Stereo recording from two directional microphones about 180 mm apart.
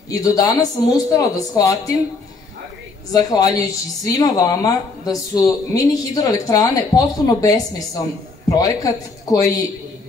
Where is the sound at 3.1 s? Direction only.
20° left (ahead or behind).